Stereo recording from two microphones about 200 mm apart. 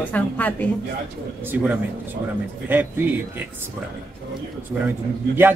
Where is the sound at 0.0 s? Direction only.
5° left (ahead or behind).